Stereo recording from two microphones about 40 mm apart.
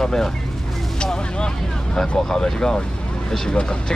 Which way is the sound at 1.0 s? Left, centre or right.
Left.